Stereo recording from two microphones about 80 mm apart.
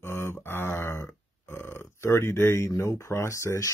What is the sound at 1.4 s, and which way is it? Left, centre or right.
Speech, left.